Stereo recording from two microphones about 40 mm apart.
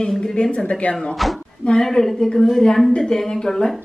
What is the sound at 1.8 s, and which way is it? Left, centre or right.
A woman's voice, centre.